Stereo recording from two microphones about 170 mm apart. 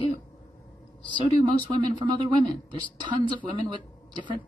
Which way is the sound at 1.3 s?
25° right (ahead or behind).